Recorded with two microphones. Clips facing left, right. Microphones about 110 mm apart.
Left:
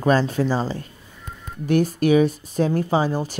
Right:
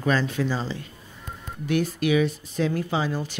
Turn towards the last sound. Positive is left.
turn(degrees=40)  # may be behind; listen again after turning